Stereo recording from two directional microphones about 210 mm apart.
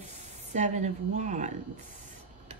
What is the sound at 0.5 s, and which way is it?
Speech, 35° right (ahead or behind).